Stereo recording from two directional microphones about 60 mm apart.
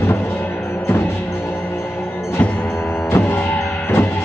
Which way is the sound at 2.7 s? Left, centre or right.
Left.